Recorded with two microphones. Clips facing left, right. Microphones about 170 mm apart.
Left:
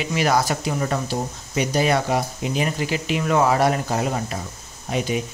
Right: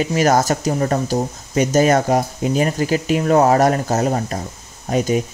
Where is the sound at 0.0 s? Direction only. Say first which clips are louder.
Right 5 dB; 45° right (ahead or behind).